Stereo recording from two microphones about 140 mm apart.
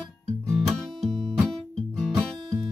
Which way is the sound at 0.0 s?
5° left (ahead or behind).